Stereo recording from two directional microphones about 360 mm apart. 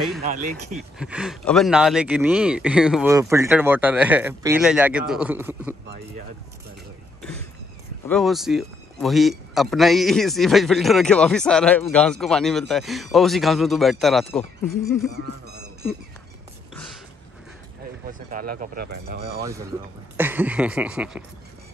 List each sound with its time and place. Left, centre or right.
0.7 s a man's voice: centre
8.1 s a man's voice: centre
18.3 s speech: right
19.4 s a man's voice: centre